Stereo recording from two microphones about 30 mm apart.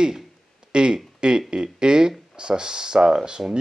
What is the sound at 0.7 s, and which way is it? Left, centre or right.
Speech, right.